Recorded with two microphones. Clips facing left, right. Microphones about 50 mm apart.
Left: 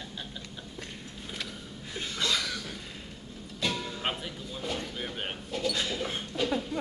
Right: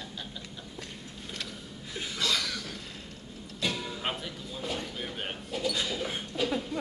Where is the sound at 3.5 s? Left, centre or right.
Centre.